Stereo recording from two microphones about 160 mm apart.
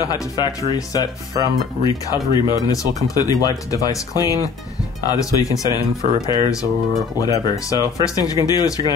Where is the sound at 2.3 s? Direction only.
20° left (ahead or behind).